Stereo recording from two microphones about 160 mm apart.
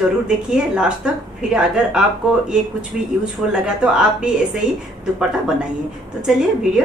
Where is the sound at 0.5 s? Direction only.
5° right (ahead or behind).